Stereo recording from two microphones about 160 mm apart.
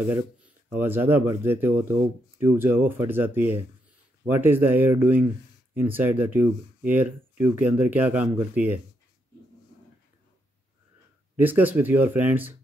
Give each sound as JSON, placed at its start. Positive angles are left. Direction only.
{"t": 0.7, "sound": "speech", "side_deg": -10}
{"t": 11.3, "sound": "speech", "side_deg": -10}